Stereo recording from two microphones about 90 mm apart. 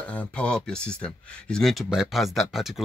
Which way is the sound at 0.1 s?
15° left (ahead or behind).